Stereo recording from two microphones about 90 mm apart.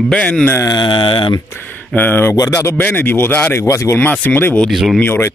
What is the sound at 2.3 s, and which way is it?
Speech, 40° left (ahead or behind).